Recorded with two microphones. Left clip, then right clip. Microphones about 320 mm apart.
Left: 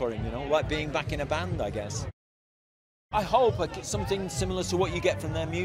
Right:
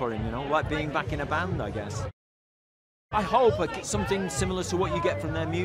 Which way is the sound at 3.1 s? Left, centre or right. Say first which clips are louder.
Right 1 dB; left.